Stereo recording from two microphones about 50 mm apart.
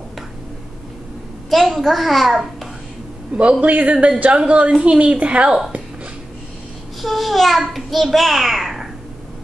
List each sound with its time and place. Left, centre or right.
1.5 s a child's voice: centre
3.3 s a woman's voice: right
7.0 s a child's voice: centre